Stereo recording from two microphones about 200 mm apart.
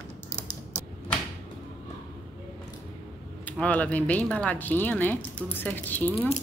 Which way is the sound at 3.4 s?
5° left (ahead or behind).